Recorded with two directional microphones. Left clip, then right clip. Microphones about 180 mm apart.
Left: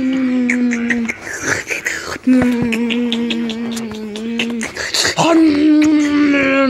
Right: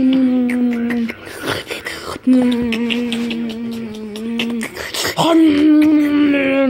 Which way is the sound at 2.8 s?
15° left (ahead or behind).